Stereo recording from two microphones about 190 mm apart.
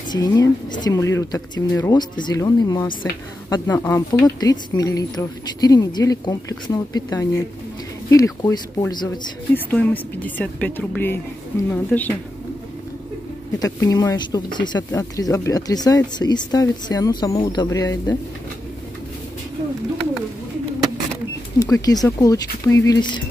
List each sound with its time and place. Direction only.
0.1 s a woman's voice: 20° left (ahead or behind)
13.6 s speech: 15° left (ahead or behind)
21.5 s speech: 20° left (ahead or behind)